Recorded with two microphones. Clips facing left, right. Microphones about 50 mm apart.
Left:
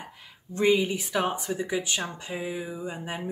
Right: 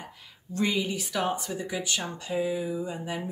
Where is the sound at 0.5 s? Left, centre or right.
Centre.